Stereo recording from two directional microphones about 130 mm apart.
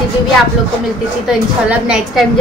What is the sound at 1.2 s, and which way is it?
A woman's voice, 5° right (ahead or behind).